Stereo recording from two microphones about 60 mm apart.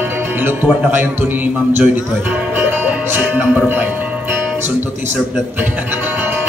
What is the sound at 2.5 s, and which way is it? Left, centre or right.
Music, right.